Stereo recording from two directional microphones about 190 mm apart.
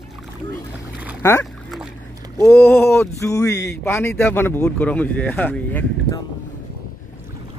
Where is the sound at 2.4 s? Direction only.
15° left (ahead or behind).